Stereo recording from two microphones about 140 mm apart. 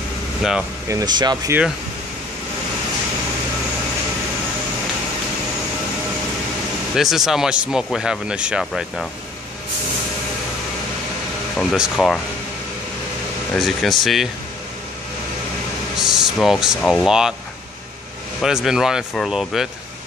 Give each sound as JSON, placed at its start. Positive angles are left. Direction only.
{"t": 0.4, "sound": "speech", "side_deg": -5}
{"t": 0.8, "sound": "speech", "side_deg": -25}
{"t": 7.0, "sound": "speech", "side_deg": 0}
{"t": 11.5, "sound": "speech", "side_deg": 0}
{"t": 13.6, "sound": "speech", "side_deg": 0}
{"t": 16.0, "sound": "speech", "side_deg": -5}
{"t": 18.4, "sound": "speech", "side_deg": -5}